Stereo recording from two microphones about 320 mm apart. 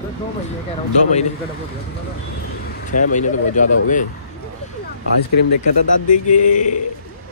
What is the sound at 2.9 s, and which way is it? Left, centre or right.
Speech, left.